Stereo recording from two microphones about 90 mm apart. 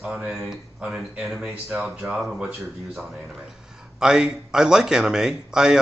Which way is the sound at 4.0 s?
5° right (ahead or behind).